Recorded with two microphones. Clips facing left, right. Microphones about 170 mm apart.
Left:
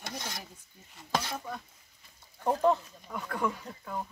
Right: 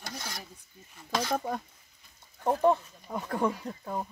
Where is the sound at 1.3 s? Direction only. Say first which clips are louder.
Right 8 dB; 45° right (ahead or behind).